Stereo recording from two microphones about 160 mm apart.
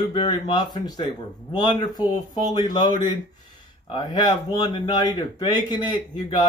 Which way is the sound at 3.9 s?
30° left (ahead or behind).